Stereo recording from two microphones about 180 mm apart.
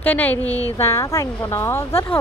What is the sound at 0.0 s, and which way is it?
A woman's voice, 10° left (ahead or behind).